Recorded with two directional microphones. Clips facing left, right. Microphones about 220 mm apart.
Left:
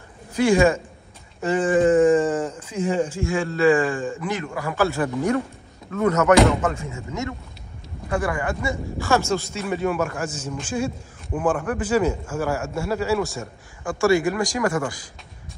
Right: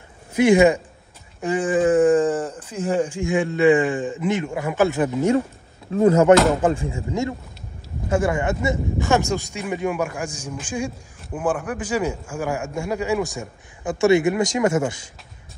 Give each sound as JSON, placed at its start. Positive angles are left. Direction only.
{"t": 0.3, "sound": "speech", "side_deg": -20}
{"t": 2.1, "sound": "speech", "side_deg": 10}
{"t": 2.9, "sound": "a man's voice", "side_deg": -10}